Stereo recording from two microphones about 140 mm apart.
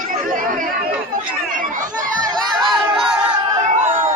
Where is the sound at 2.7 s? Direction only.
Centre (ahead or behind).